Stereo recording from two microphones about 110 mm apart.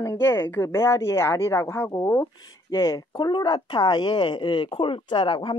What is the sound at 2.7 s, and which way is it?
Speech, 30° left (ahead or behind).